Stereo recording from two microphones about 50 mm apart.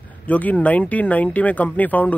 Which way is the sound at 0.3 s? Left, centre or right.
Left.